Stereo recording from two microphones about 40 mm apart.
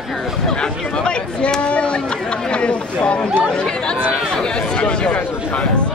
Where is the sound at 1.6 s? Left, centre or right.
Left.